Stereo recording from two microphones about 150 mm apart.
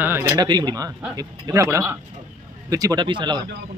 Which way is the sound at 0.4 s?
30° right (ahead or behind).